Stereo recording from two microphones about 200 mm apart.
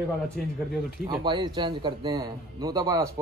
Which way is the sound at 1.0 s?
20° right (ahead or behind).